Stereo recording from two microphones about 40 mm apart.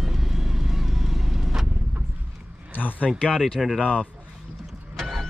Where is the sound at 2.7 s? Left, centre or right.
Left.